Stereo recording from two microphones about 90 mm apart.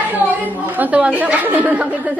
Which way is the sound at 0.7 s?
15° right (ahead or behind).